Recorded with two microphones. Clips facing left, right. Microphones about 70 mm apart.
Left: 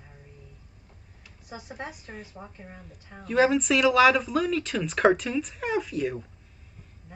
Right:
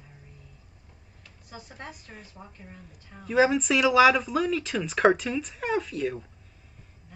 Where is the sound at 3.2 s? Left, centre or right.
Centre.